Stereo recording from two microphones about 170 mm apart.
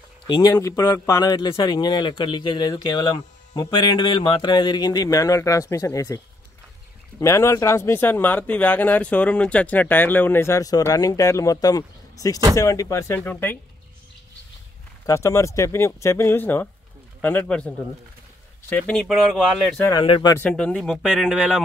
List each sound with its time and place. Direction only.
0.3 s a man's voice: 20° left (ahead or behind)
15.0 s speech: 15° left (ahead or behind); by 19.8 s centre (ahead or behind)
19.8 s a man's voice: 25° left (ahead or behind)
20.3 s speech: 5° left (ahead or behind)